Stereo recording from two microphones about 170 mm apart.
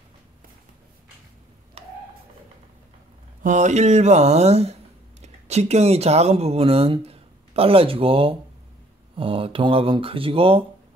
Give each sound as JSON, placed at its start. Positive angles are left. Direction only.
{"t": 3.4, "sound": "speech", "side_deg": -45}